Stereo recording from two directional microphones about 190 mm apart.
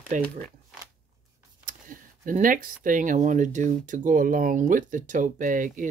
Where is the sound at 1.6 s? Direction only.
45° right (ahead or behind).